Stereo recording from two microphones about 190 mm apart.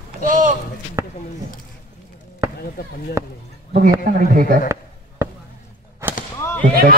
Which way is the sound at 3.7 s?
45° right (ahead or behind).